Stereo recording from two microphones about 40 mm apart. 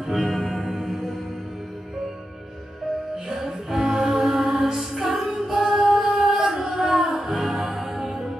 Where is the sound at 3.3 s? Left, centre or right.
Centre.